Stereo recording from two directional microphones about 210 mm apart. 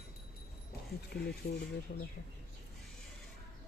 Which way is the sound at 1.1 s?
50° left (ahead or behind).